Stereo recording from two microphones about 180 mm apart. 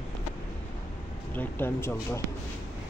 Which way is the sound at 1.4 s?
10° left (ahead or behind).